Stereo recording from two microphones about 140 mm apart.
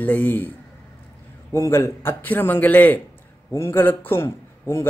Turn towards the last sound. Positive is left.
turn(degrees=20)  # may be behind; listen again after turning